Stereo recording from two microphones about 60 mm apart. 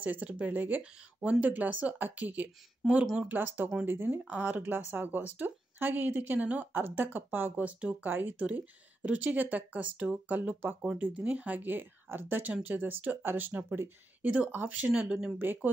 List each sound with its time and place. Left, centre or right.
0.0 s speech: right
2.8 s speech: centre
3.2 s speech: right
14.9 s speech: centre
15.3 s speech: right